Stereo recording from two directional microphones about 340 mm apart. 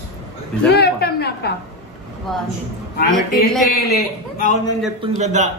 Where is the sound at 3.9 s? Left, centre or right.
Left.